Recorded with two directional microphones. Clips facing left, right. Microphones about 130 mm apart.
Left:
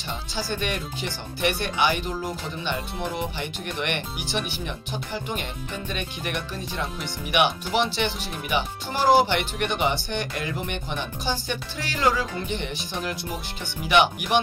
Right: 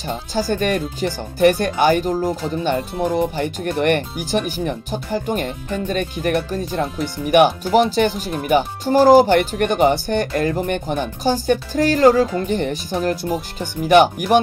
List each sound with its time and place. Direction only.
0.0 s speech: 45° right (ahead or behind)